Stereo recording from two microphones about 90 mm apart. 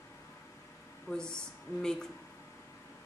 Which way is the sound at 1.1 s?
30° left (ahead or behind).